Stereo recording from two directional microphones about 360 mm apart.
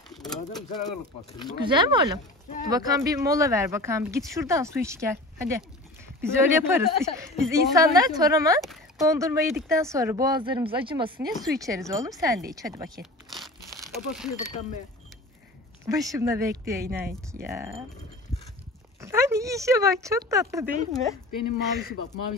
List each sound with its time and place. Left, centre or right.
0.1 s mechanisms: centre
1.7 s a woman's voice: centre
13.0 s crumpling: centre
14.3 s speech: left
15.9 s a woman's voice: centre
18.9 s speech: centre
21.3 s speech: left